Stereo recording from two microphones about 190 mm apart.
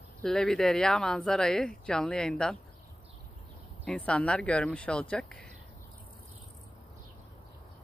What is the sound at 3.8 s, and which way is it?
Speech, 5° left (ahead or behind).